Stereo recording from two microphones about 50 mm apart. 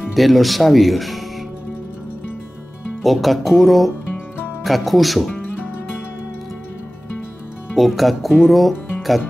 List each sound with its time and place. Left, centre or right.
0.0 s speech: centre
3.0 s speech: centre
4.1 s music: left
4.6 s speech: centre
7.7 s speech: centre